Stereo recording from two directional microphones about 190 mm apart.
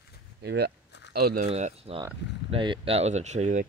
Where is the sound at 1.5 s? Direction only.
30° right (ahead or behind).